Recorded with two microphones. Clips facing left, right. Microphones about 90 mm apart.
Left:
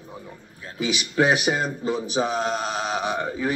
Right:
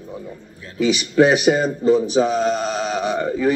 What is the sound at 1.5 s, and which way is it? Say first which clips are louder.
A man's voice: right 9 dB; 10° left (ahead or behind).